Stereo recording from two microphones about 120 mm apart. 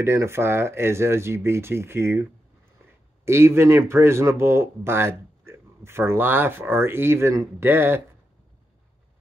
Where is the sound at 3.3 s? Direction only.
20° right (ahead or behind).